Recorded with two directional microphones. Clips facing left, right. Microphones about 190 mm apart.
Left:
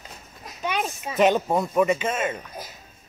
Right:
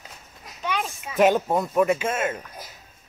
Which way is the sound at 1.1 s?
5° right (ahead or behind).